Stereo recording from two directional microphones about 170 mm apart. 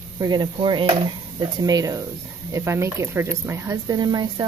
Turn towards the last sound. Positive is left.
turn(degrees=-25)  # may be behind; listen again after turning